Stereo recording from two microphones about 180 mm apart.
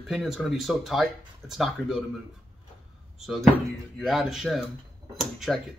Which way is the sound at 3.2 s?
Centre (ahead or behind).